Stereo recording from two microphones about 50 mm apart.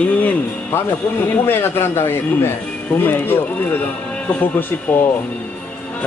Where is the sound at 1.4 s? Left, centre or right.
Left.